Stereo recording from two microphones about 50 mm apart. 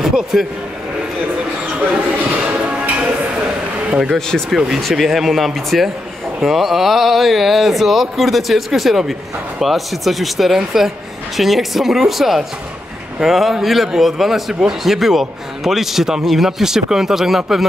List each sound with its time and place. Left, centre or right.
0.0 s a sound: centre
2.4 s music: right
3.9 s a man's voice: centre